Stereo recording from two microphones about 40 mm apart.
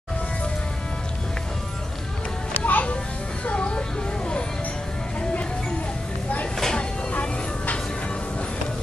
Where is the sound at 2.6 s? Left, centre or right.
Left.